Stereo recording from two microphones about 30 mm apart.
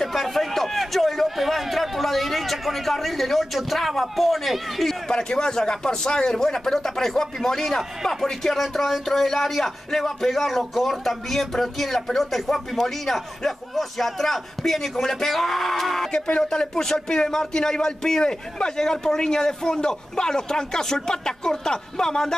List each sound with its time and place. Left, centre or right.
0.1 s a sound: centre
1.3 s a man's voice: centre
5.1 s a man's voice: left; by 16.1 s centre
16.1 s a man's voice: left